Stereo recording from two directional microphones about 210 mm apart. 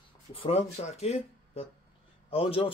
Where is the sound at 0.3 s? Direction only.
25° left (ahead or behind).